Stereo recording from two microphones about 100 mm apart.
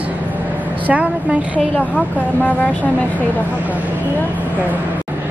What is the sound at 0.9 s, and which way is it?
Speech, 10° right (ahead or behind).